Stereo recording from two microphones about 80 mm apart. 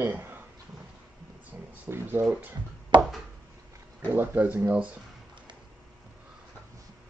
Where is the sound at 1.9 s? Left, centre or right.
Right.